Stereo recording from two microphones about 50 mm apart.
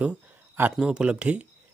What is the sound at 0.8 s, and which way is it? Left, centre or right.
Speech, centre.